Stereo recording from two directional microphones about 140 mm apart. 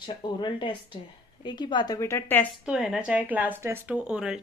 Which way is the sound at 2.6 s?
5° right (ahead or behind).